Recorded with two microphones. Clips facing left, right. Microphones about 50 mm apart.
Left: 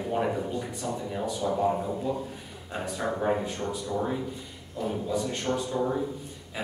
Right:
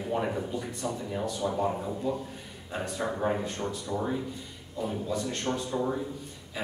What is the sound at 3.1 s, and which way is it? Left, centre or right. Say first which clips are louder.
Speech: left 4 dB; centre.